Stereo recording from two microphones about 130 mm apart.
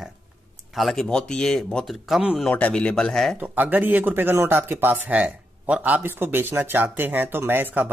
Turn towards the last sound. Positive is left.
turn(degrees=-15)  # may be behind; listen again after turning